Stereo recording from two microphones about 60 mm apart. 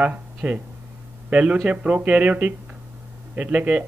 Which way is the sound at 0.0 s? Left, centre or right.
Right.